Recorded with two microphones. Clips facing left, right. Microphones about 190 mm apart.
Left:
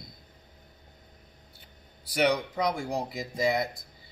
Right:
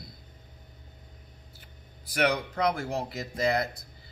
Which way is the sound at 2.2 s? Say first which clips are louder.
Even; centre (ahead or behind).